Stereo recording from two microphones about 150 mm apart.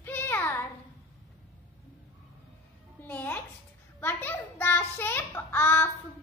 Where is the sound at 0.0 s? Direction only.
15° left (ahead or behind).